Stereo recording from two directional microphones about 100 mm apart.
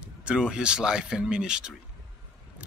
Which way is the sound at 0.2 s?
10° right (ahead or behind).